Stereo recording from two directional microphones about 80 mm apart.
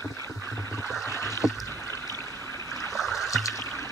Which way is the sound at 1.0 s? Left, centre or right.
Left.